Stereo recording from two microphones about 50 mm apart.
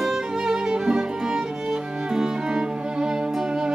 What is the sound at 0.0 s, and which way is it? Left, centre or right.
Music, centre.